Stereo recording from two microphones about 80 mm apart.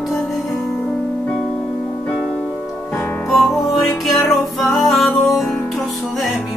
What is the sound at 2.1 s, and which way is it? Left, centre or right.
Music, centre.